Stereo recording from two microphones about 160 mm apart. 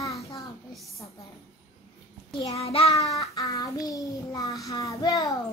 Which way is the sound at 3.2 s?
20° left (ahead or behind).